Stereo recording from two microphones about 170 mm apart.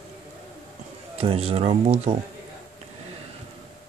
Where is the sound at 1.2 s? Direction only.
35° right (ahead or behind).